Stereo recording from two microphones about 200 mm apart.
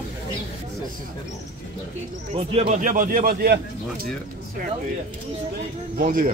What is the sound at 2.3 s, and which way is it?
A man's voice, 35° right (ahead or behind).